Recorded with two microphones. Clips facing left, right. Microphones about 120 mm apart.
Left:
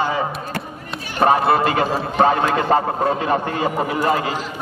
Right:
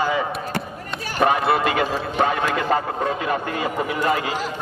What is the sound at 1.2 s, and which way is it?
A man's voice, 35° left (ahead or behind).